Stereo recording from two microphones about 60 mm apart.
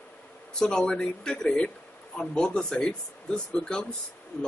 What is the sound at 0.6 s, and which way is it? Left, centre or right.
Speech, centre.